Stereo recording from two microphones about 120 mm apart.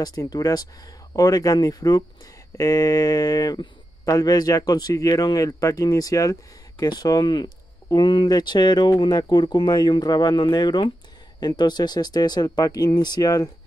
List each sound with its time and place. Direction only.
0.0 s speech: 35° left (ahead or behind)